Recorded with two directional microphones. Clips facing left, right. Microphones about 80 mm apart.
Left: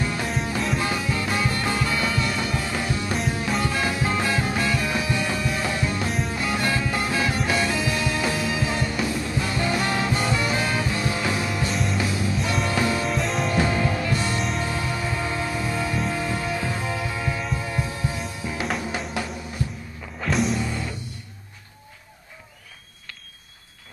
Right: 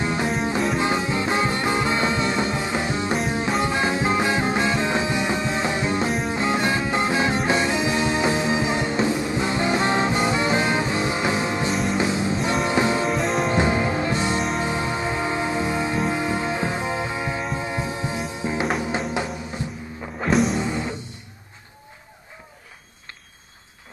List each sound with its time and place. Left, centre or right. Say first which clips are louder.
0.0 s music: right 3 dB; right
11.7 s music: right 3 dB; centre
12.0 s music: right 3 dB; right
13.1 s music: right 3 dB; centre
13.5 s music: right 2 dB; right
18.9 s drum: right 4 dB; right
20.2 s music: right 3 dB; centre
20.5 s music: right 3 dB; right